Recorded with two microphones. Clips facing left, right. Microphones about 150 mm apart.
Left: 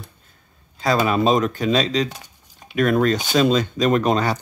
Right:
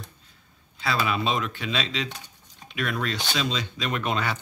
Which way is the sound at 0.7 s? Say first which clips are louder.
Left 8 dB; 40° left (ahead or behind).